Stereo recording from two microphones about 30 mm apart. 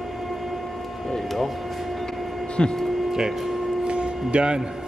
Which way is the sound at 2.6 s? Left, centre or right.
Left.